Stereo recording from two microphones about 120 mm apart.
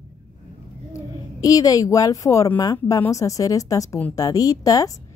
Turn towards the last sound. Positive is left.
turn(degrees=30)  # may be behind; listen again after turning